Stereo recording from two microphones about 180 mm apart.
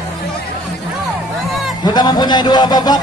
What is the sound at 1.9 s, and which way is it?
A man's voice, 25° left (ahead or behind).